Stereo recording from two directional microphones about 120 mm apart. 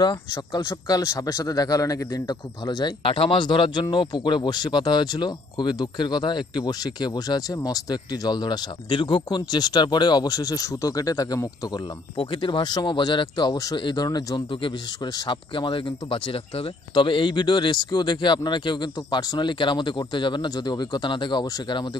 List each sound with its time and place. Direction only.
0.6 s speech: 30° left (ahead or behind)
3.0 s speech: 50° left (ahead or behind)